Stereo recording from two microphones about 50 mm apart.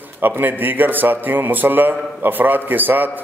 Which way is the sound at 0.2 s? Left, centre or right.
Right.